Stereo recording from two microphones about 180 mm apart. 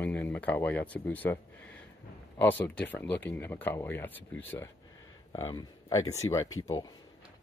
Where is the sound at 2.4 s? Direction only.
10° left (ahead or behind).